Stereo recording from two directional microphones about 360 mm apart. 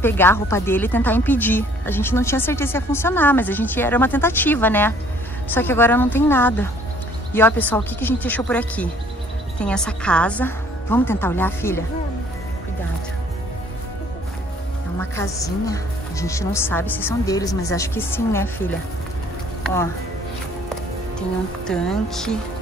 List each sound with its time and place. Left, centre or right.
0.0 s speech: centre
15.0 s a woman's voice: centre
21.6 s speech: centre